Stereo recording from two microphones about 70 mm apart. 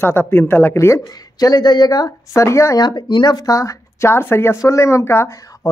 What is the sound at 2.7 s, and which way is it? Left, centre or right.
Speech, left.